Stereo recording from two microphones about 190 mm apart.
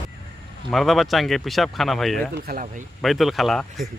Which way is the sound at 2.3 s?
50° right (ahead or behind).